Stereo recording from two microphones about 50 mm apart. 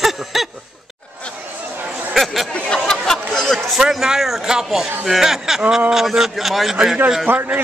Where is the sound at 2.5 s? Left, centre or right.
Centre.